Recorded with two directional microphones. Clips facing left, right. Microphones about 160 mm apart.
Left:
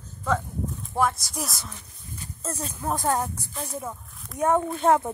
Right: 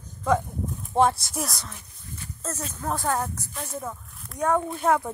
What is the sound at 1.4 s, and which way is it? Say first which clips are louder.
Speech: right 2 dB; centre (ahead or behind).